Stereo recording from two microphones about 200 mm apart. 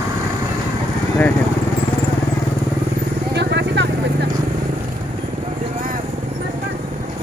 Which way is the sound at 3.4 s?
60° right (ahead or behind).